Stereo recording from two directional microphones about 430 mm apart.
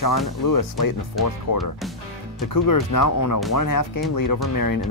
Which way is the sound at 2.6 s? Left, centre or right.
Left.